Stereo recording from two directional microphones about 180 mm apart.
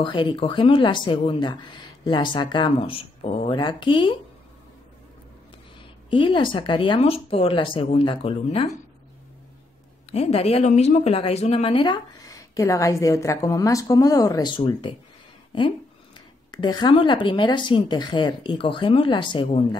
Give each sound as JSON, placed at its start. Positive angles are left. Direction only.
{"t": 0.0, "sound": "a woman's voice", "side_deg": 25}
{"t": 5.8, "sound": "a woman's voice", "side_deg": 30}
{"t": 10.1, "sound": "a woman's voice", "side_deg": 35}
{"t": 16.5, "sound": "a woman's voice", "side_deg": 25}